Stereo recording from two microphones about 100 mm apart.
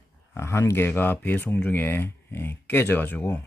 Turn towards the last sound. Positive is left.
turn(degrees=20)  # may be behind; listen again after turning